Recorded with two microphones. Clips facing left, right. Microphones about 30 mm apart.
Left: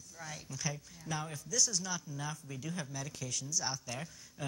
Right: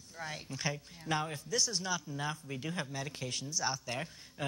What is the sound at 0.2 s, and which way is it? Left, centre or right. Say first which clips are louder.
Speech: right 3 dB; right.